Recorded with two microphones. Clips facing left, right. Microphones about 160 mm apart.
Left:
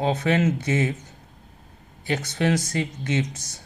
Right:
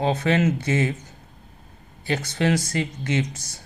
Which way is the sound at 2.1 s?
20° left (ahead or behind).